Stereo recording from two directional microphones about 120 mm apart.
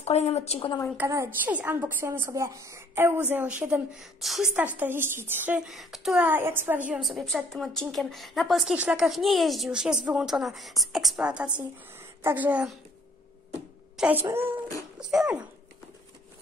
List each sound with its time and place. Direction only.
0.0 s a woman's voice: 60° left (ahead or behind)
0.9 s a woman's voice: 25° right (ahead or behind); by 4.5 s centre (ahead or behind)
4.6 s a woman's voice: 15° right (ahead or behind)
5.7 s a woman's voice: centre (ahead or behind)
6.2 s a woman's voice: 20° right (ahead or behind)
7.0 s a woman's voice: centre (ahead or behind)
14.0 s a woman's voice: 5° right (ahead or behind)
14.3 s a woman's voice: 15° right (ahead or behind)
15.0 s a woman's voice: 5° right (ahead or behind)